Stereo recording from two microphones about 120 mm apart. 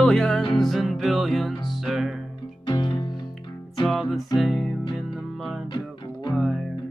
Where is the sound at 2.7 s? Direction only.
40° left (ahead or behind).